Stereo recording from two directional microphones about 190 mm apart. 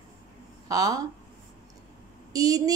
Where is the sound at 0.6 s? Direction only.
20° right (ahead or behind).